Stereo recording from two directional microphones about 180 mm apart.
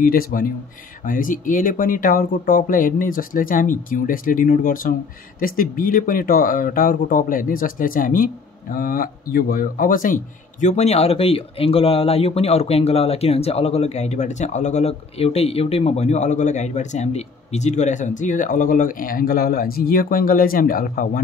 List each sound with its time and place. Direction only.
0.0 s speech: 55° left (ahead or behind)